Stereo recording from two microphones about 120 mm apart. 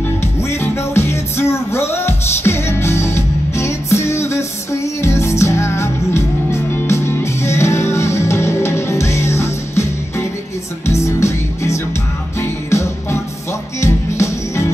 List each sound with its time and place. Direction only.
0.2 s music: 20° left (ahead or behind)